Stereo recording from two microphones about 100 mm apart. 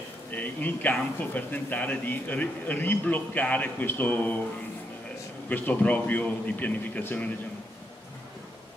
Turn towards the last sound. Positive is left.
turn(degrees=15)  # may be behind; listen again after turning